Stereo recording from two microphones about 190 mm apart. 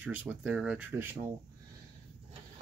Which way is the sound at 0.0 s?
10° right (ahead or behind).